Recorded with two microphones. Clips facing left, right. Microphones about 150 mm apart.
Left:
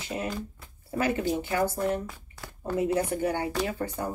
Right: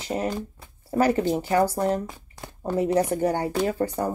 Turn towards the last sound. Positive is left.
turn(degrees=-35)  # may be behind; listen again after turning